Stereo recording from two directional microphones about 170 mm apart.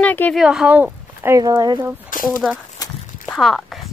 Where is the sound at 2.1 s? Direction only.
55° left (ahead or behind).